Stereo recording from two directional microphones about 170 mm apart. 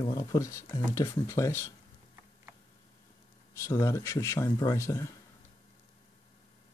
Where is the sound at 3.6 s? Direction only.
20° left (ahead or behind).